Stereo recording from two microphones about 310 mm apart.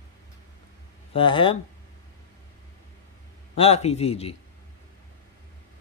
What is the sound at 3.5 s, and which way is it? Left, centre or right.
Speech, centre.